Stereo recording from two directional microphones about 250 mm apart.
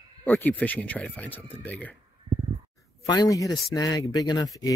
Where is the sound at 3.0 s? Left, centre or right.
Centre.